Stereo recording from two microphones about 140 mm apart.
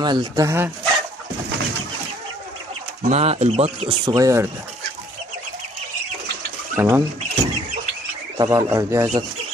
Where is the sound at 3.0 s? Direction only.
50° right (ahead or behind).